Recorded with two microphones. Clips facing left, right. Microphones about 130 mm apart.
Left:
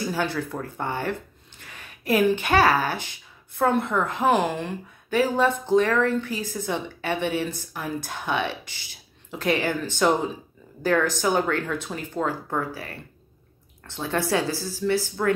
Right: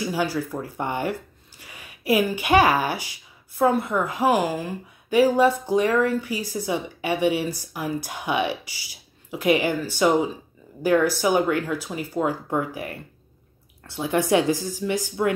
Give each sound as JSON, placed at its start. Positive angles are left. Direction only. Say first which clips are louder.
{"t": 0.0, "sound": "speech", "louder": "right 2 dB", "side_deg": -10}